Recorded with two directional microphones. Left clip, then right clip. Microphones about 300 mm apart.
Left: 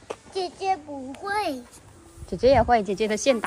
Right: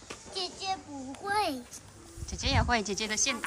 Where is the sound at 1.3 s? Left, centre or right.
Centre.